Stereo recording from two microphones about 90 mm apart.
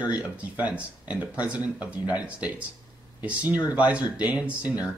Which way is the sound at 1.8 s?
50° left (ahead or behind).